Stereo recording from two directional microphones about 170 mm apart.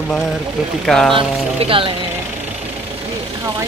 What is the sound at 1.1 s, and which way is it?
Speech, 30° right (ahead or behind).